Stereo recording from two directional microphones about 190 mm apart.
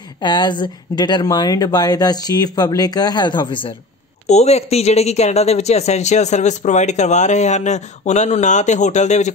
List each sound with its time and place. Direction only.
0.2 s speech: 25° left (ahead or behind)